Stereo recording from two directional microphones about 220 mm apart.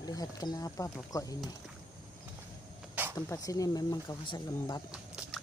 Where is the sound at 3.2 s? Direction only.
15° left (ahead or behind).